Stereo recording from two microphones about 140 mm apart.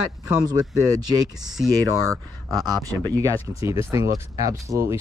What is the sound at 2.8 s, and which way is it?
Speech, 25° right (ahead or behind).